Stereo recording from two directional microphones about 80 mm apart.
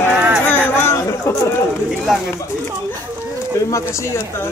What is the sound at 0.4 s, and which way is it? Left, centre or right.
Chatter, left.